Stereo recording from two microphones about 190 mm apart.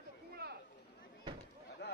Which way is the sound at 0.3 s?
55° right (ahead or behind).